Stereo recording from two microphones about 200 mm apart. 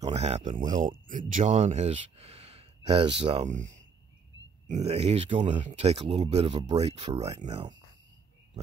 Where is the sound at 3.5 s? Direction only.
40° right (ahead or behind).